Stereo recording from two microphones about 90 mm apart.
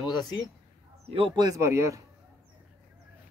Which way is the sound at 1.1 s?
90° right.